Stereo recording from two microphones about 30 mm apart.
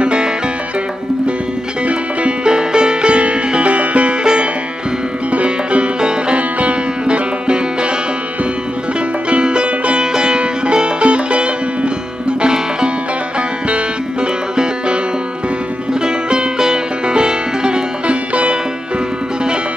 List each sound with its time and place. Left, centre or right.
0.0 s music: right
2.4 s music: right
3.5 s music: right
4.2 s music: right
5.3 s music: right
5.9 s music: right
6.3 s music: right
9.3 s music: right
14.2 s music: right
18.0 s music: right